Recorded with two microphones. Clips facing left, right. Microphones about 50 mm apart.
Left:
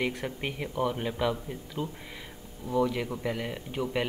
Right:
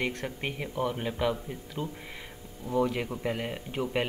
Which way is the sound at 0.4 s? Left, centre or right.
Centre.